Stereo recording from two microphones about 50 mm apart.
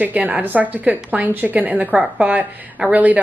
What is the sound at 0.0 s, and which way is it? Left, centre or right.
Speech, right.